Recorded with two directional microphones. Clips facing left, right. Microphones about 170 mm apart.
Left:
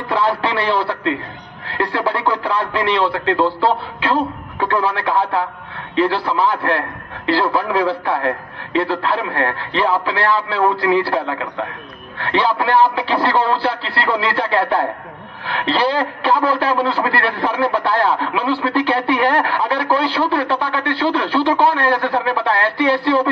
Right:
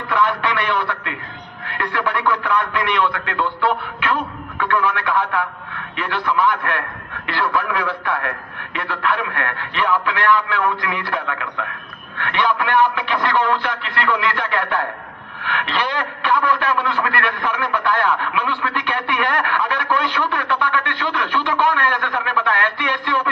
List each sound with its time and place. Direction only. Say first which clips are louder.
0.1 s a man's voice: left 1 dB; 30° left (ahead or behind)